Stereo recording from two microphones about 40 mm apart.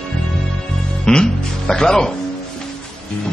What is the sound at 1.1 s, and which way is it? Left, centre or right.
Music, left.